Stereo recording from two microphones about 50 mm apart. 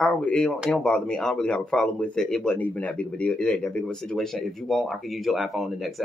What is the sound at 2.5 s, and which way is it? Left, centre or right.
Speech, left.